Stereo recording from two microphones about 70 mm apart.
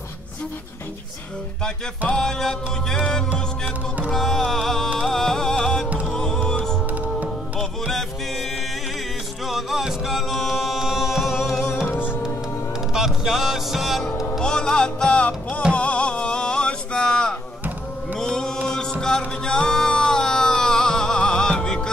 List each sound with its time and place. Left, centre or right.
2.1 s music: centre
4.1 s music: centre
7.0 s music: centre
9.5 s music: centre
11.9 s music: left
12.9 s music: centre
14.4 s music: centre
15.7 s a sound: centre
18.2 s mantra: centre
18.7 s music: centre